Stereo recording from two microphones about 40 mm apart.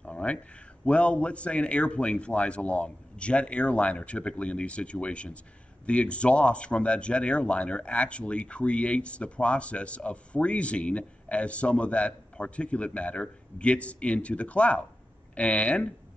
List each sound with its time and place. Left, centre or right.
0.0 s speech: left